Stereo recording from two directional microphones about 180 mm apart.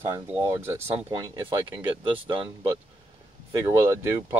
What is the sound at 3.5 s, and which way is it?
Speech, 15° right (ahead or behind).